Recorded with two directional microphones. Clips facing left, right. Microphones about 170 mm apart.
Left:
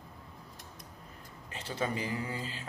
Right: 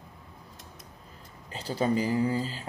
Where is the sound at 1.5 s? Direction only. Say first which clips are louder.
Right 7 dB; 35° right (ahead or behind).